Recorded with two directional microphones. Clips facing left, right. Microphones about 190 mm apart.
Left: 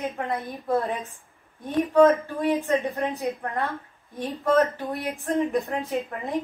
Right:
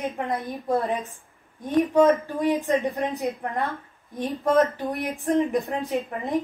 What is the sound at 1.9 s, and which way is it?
Speech, 15° right (ahead or behind).